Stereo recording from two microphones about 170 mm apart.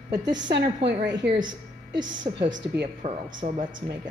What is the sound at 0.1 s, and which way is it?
A woman's voice, 20° right (ahead or behind).